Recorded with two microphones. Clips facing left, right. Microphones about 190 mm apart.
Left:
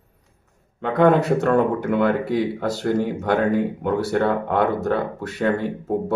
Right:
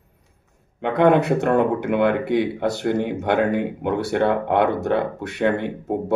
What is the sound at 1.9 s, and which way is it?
Speech, 20° right (ahead or behind).